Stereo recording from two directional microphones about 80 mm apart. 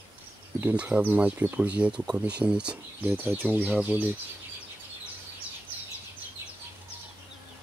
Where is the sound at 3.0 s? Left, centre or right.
Right.